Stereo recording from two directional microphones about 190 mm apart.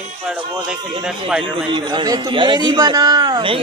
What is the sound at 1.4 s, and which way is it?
A man's voice, 25° right (ahead or behind).